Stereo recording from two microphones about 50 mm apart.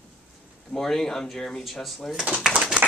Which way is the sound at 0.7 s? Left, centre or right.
Centre.